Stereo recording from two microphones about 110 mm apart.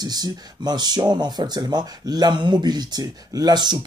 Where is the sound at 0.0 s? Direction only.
40° right (ahead or behind).